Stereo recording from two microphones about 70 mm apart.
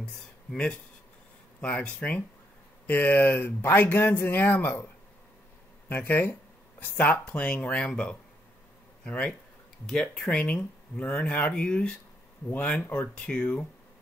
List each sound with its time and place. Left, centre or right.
0.0 s a sound: centre
1.6 s speech: centre
5.9 s speech: left
13.1 s speech: centre